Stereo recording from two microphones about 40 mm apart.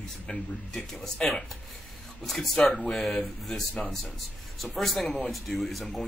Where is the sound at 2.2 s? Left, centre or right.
Centre.